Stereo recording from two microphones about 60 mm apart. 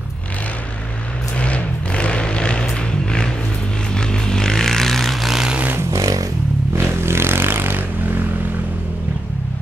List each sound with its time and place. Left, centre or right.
1.4 s vehicle: centre
3.9 s vehicle: centre
5.5 s vehicle: right
5.8 s a sound: right
6.7 s vehicle: right